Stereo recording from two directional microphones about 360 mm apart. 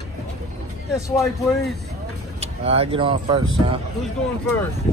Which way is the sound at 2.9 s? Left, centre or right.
Centre.